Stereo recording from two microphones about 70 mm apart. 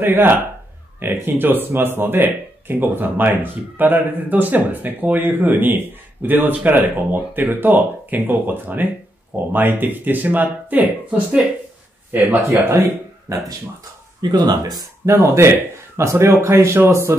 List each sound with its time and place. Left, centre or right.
0.0 s speech: right
12.4 s speech: right
13.3 s speech: right
14.3 s speech: right
15.0 s speech: right